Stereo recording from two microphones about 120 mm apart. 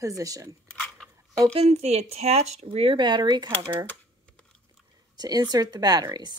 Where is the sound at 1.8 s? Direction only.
65° right (ahead or behind).